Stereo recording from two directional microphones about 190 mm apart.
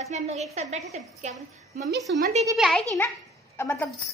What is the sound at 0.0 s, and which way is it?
A woman's voice, 35° right (ahead or behind).